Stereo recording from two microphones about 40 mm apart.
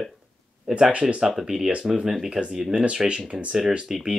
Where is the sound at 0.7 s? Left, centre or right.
Right.